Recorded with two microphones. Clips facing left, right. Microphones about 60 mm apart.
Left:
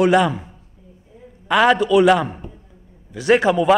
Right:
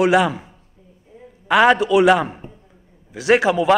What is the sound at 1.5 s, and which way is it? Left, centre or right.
Speech, centre.